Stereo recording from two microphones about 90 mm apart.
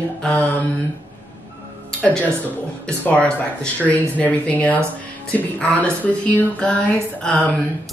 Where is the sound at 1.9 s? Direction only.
15° left (ahead or behind).